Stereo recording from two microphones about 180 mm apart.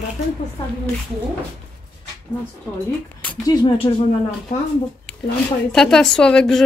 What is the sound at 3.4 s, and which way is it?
Speech, 25° left (ahead or behind).